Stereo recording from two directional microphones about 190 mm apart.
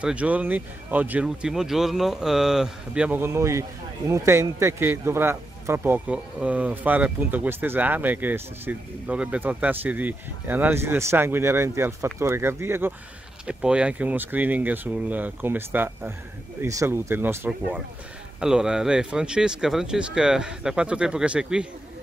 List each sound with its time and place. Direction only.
0.0 s a man's voice: 5° right (ahead or behind)